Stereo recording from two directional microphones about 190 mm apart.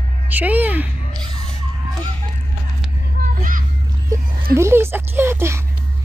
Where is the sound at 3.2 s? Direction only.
55° right (ahead or behind).